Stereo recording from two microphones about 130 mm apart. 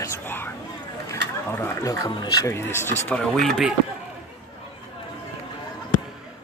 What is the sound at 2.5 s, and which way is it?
Speech, 20° left (ahead or behind).